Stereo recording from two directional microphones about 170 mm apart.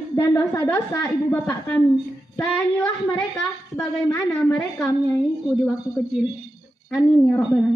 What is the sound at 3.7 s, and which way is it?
Speech, 15° left (ahead or behind).